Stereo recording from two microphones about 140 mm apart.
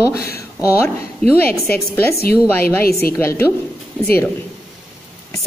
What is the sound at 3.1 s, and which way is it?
Speech, 20° left (ahead or behind).